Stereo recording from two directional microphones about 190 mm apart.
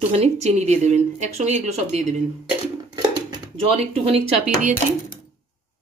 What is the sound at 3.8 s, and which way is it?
Speech, 35° right (ahead or behind).